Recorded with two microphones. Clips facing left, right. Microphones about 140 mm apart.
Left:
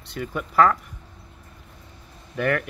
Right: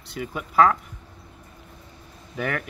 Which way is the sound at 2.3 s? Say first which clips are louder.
Left 4 dB; centre (ahead or behind).